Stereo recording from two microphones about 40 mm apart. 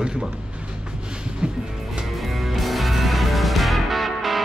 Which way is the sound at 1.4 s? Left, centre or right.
Right.